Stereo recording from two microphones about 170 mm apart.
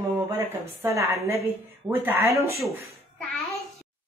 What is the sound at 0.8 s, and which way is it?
Speech, 15° right (ahead or behind).